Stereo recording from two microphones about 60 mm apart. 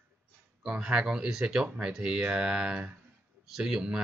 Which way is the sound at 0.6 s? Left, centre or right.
Centre.